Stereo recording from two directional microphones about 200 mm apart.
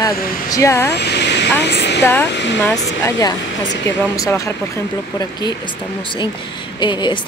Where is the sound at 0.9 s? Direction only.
55° left (ahead or behind).